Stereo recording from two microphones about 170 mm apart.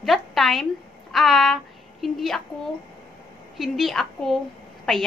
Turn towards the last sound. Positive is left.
turn(degrees=5)  # may be behind; listen again after turning